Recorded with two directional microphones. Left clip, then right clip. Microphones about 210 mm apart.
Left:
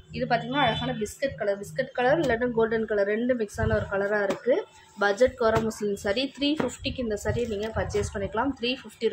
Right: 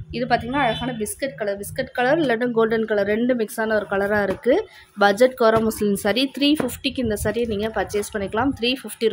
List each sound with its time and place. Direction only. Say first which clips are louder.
0.1 s a woman's voice: right 5 dB; 50° right (ahead or behind)